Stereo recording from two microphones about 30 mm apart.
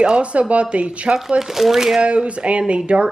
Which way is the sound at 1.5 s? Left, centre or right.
Centre.